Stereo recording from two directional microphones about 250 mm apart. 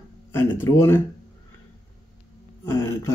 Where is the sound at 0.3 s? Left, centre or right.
Centre.